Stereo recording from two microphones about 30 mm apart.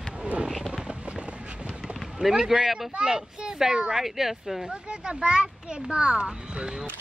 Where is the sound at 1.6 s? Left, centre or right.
Centre.